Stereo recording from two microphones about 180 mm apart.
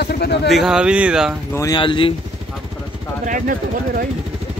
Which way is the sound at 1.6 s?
25° left (ahead or behind).